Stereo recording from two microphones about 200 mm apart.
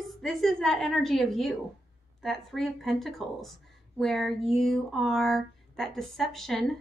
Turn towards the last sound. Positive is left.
turn(degrees=0)  # may be behind; listen again after turning